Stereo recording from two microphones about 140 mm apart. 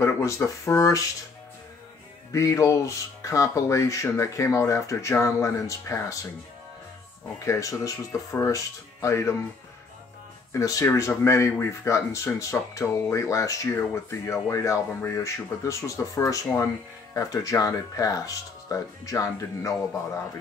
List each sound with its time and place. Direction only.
0.0 s speech: 20° left (ahead or behind)
2.3 s speech: 25° left (ahead or behind)
7.3 s speech: 20° left (ahead or behind)
10.5 s speech: 25° left (ahead or behind)